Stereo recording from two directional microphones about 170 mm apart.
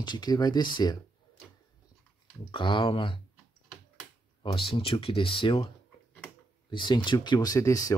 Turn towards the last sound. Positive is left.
turn(degrees=20)  # may be behind; listen again after turning